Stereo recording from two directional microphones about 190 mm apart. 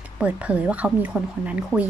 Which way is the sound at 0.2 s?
5° right (ahead or behind).